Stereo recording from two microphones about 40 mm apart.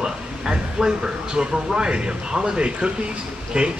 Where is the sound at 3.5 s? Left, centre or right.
Right.